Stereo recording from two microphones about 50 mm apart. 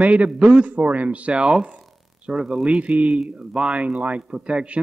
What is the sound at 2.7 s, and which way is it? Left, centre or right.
Speech, right.